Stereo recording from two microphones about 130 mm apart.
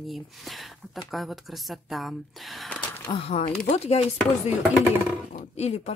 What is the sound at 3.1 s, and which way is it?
Speech, 50° left (ahead or behind).